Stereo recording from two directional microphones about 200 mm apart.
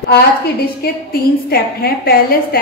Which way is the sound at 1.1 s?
50° left (ahead or behind).